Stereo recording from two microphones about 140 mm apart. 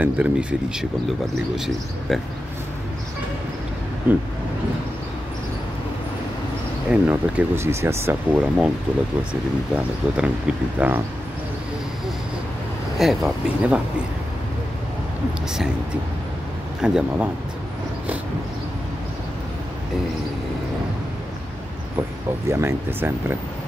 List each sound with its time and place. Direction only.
0.0 s speech: 10° right (ahead or behind)
4.1 s speech: 10° right (ahead or behind)
6.9 s speech: 10° right (ahead or behind)
8.3 s speech: 5° right (ahead or behind)
13.0 s speech: centre (ahead or behind)
16.8 s speech: 5° right (ahead or behind)
22.5 s speech: 20° right (ahead or behind)